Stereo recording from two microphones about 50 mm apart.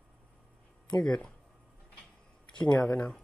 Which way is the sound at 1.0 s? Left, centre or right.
Centre.